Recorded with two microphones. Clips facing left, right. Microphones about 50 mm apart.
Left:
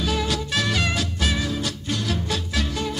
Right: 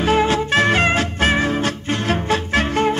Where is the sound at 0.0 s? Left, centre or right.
Right.